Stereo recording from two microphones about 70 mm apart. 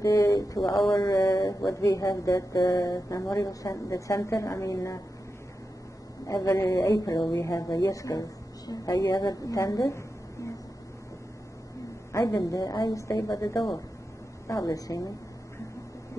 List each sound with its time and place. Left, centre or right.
0.0 s speech: left
6.2 s speech: left
12.1 s a woman's voice: left
14.5 s a woman's voice: left